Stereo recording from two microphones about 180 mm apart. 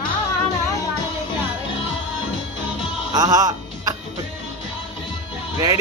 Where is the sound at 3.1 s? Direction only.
20° right (ahead or behind).